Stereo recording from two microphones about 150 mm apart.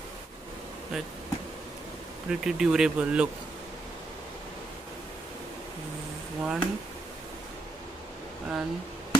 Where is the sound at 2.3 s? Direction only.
5° right (ahead or behind).